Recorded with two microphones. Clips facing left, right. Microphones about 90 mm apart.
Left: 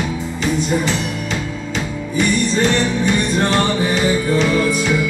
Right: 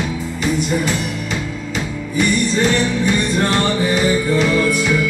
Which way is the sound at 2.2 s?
20° left (ahead or behind).